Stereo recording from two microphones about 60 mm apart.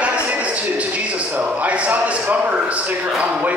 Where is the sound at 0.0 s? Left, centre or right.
Right.